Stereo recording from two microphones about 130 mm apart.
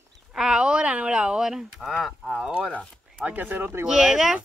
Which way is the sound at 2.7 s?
5° left (ahead or behind).